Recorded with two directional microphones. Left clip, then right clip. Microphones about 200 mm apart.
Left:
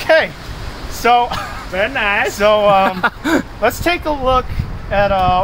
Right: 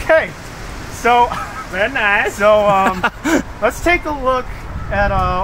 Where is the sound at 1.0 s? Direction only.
65° left (ahead or behind).